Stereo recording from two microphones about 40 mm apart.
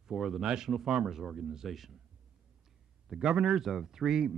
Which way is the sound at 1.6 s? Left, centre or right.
Centre.